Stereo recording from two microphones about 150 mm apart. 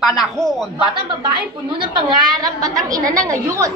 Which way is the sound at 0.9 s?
30° right (ahead or behind).